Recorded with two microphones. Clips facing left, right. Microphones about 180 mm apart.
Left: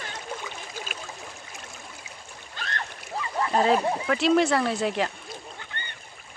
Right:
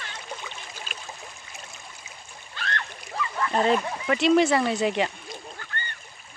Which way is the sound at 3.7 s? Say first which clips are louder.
Left 2 dB; 30° left (ahead or behind).